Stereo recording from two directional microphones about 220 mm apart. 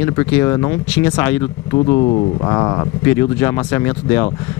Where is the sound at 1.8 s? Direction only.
25° left (ahead or behind).